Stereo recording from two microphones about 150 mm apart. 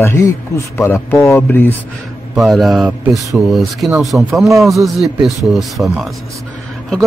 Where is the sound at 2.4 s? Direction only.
Centre (ahead or behind).